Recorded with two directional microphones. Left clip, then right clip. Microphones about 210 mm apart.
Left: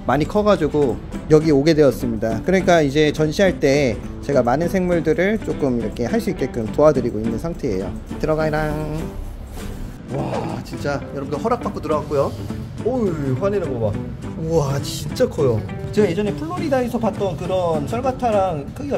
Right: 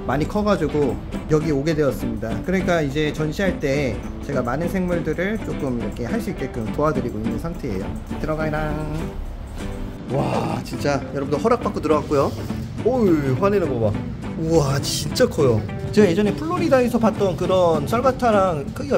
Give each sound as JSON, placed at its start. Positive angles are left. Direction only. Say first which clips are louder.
{"t": 0.0, "sound": "speech", "louder": "left 4 dB", "side_deg": 20}
{"t": 10.1, "sound": "speech", "louder": "right 2 dB", "side_deg": -5}